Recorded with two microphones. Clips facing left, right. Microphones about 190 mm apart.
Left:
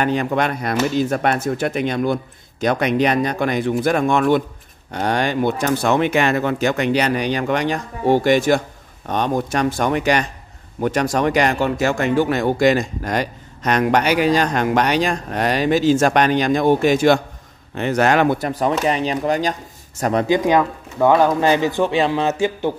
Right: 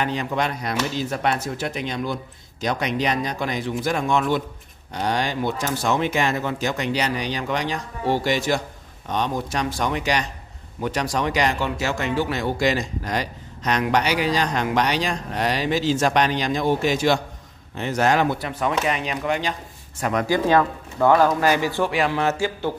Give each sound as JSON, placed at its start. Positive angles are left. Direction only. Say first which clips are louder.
{"t": 0.0, "sound": "speech", "louder": "left 5 dB", "side_deg": 55}
{"t": 18.5, "sound": "speech", "louder": "left 4 dB", "side_deg": 35}
{"t": 20.2, "sound": "speech", "louder": "left 1 dB", "side_deg": 15}